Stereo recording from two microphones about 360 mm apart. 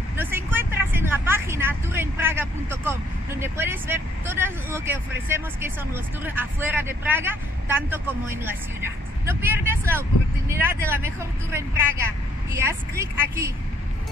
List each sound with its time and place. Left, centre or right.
0.2 s speech: centre